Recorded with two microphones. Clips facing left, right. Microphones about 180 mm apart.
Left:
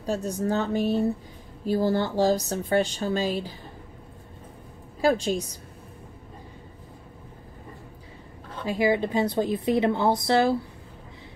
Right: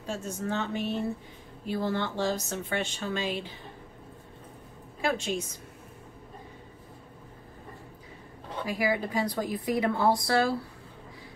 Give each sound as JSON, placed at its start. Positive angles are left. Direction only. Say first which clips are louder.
{"t": 0.0, "sound": "speech", "louder": "left 7 dB", "side_deg": 35}
{"t": 5.0, "sound": "speech", "louder": "left 7 dB", "side_deg": 35}
{"t": 8.6, "sound": "a woman's voice", "louder": "left 6 dB", "side_deg": 25}